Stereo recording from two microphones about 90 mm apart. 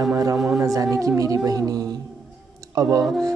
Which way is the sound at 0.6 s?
40° right (ahead or behind).